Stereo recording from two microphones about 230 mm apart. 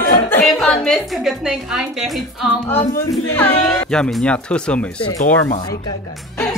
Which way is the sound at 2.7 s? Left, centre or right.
Left.